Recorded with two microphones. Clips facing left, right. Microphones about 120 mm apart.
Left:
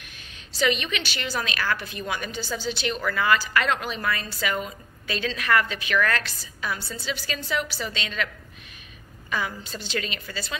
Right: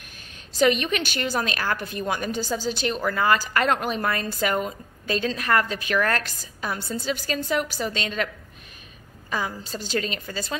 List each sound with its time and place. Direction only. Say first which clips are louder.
0.5 s a woman's voice: right 4 dB; 45° right (ahead or behind)
9.3 s a woman's voice: right 1 dB; 35° right (ahead or behind)